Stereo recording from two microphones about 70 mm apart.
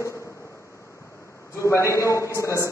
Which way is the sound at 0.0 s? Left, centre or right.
Left.